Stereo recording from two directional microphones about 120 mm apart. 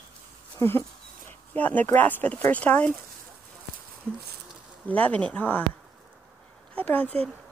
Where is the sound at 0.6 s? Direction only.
20° left (ahead or behind).